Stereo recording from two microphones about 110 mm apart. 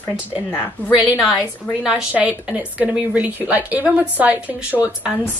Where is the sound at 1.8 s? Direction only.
10° right (ahead or behind).